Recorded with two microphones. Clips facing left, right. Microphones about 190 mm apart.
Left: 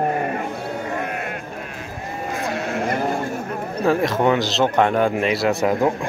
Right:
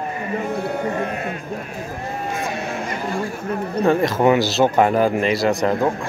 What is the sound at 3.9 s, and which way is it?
Speech, centre (ahead or behind).